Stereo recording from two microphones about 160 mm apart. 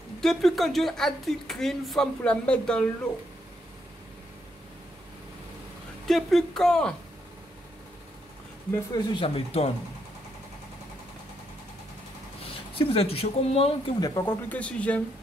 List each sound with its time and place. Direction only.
0.2 s a woman's voice: centre (ahead or behind)
6.0 s a woman's voice: centre (ahead or behind)
8.9 s speech: 30° left (ahead or behind)
12.7 s speech: 40° left (ahead or behind)
13.9 s speech: 25° left (ahead or behind)
14.2 s speech: 10° left (ahead or behind)